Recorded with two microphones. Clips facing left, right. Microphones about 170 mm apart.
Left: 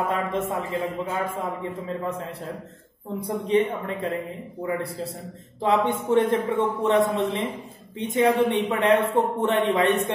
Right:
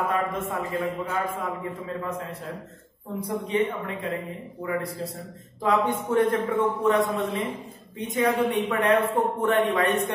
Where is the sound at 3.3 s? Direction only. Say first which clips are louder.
Left 3 dB; 30° left (ahead or behind).